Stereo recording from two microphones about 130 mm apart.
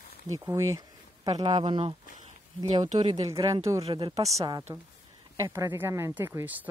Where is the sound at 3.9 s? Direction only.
45° right (ahead or behind).